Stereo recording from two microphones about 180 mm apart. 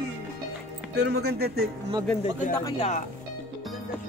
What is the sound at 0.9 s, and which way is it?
Speech, 65° right (ahead or behind).